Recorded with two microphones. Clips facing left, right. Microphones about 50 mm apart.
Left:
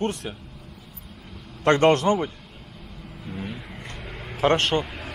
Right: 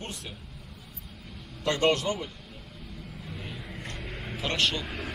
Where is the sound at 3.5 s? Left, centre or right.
Left.